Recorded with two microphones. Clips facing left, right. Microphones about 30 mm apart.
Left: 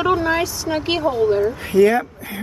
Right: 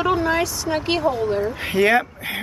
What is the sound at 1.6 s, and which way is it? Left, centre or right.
Speech, right.